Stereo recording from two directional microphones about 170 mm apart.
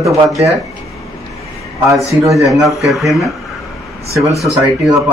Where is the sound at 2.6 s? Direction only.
Centre (ahead or behind).